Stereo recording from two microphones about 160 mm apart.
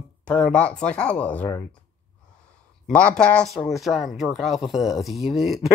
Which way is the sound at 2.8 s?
5° left (ahead or behind).